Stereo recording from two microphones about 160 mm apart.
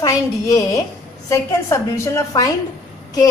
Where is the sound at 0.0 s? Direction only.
20° left (ahead or behind).